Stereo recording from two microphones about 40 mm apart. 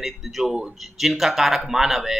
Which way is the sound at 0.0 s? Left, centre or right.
Centre.